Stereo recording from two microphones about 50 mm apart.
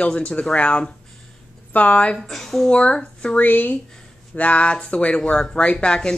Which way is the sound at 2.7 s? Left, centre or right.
Left.